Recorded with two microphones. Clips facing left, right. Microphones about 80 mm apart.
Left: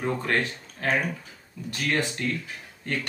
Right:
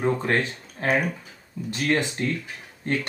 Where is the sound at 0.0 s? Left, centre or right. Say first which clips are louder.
Right 3 dB; right.